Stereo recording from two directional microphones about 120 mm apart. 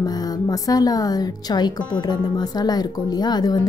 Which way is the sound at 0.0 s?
35° left (ahead or behind).